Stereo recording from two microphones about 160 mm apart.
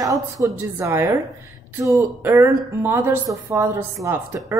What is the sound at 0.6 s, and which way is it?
Speech, 15° right (ahead or behind).